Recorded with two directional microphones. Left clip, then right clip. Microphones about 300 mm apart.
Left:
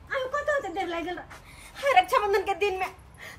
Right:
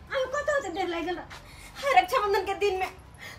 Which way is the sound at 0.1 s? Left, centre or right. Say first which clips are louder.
Even; centre.